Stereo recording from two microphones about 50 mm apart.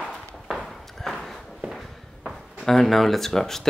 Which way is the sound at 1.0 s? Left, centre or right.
Centre.